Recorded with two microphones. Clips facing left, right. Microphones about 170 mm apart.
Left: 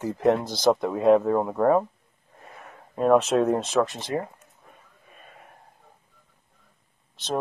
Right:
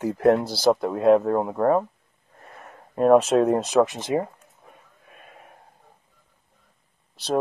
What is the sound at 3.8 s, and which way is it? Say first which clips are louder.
Speech: right 3 dB; 20° right (ahead or behind).